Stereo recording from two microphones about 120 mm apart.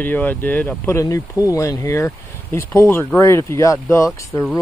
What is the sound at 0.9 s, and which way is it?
Speech, 25° left (ahead or behind).